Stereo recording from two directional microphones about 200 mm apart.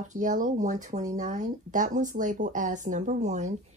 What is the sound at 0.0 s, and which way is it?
Speech, 40° right (ahead or behind).